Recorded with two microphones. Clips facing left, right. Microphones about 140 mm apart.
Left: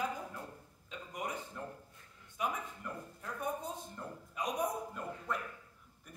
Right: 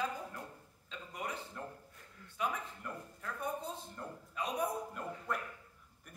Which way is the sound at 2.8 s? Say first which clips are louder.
Left 1 dB; centre (ahead or behind).